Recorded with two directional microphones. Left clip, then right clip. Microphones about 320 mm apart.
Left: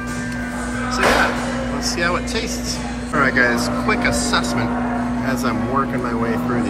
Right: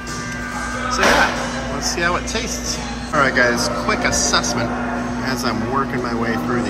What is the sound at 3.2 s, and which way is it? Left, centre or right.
A man's voice, centre.